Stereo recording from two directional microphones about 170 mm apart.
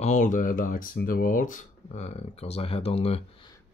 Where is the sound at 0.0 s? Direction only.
45° left (ahead or behind).